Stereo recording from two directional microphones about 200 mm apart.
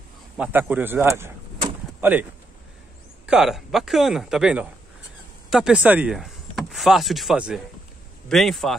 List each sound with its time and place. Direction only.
0.4 s speech: 10° right (ahead or behind)
3.3 s speech: centre (ahead or behind)